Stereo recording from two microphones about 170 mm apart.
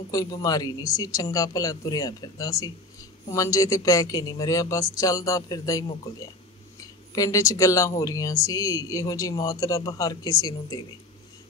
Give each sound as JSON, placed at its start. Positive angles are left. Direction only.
{"t": 0.1, "sound": "speech", "side_deg": 20}